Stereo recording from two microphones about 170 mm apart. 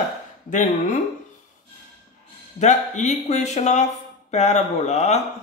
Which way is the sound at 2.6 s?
45° left (ahead or behind).